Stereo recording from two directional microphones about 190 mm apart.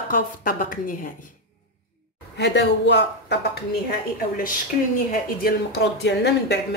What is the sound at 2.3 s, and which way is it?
Speech, 65° left (ahead or behind).